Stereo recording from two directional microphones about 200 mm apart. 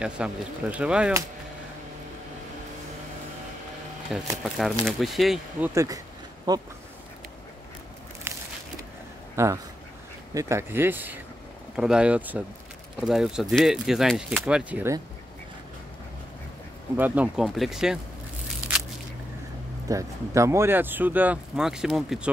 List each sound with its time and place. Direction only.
0.0 s speech: 5° right (ahead or behind)
4.4 s speech: centre (ahead or behind)
6.5 s speech: 20° right (ahead or behind)
9.3 s speech: 15° right (ahead or behind)
16.9 s speech: 10° right (ahead or behind)
19.9 s speech: 15° right (ahead or behind)